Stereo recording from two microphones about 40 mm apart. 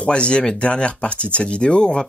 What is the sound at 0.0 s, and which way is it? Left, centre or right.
Speech, left.